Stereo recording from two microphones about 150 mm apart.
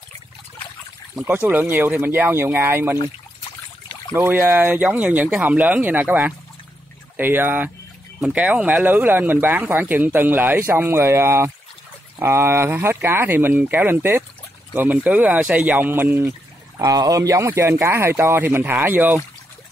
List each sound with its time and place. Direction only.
1.1 s speech: 10° right (ahead or behind)
4.1 s speech: 15° right (ahead or behind)